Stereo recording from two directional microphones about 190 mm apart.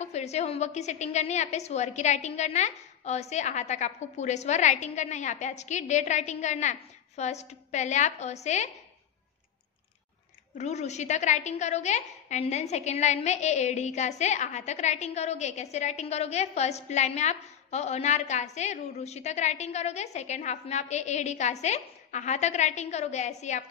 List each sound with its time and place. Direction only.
0.0 s a woman's voice: 35° left (ahead or behind)
10.6 s a woman's voice: 35° left (ahead or behind)